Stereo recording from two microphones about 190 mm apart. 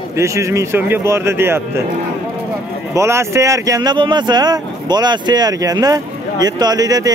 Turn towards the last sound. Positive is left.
turn(degrees=-20)  # may be behind; listen again after turning